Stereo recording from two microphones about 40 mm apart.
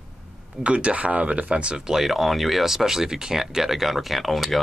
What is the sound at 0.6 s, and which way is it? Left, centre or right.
Speech, right.